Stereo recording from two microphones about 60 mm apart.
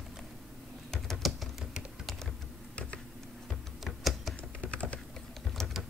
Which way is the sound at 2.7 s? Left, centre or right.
Centre.